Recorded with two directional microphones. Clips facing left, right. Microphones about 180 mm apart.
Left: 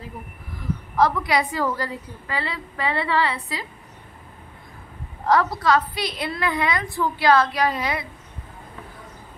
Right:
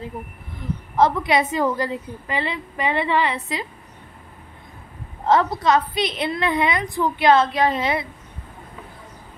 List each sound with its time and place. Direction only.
0.9 s a woman's voice: 25° right (ahead or behind)
5.2 s a woman's voice: 25° right (ahead or behind)